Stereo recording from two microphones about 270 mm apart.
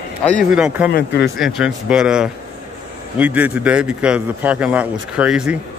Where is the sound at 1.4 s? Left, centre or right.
Centre.